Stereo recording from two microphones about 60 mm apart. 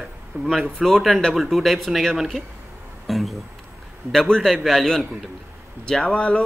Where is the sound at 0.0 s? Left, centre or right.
Centre.